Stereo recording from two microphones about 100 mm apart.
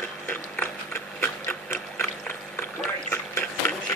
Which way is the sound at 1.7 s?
20° left (ahead or behind).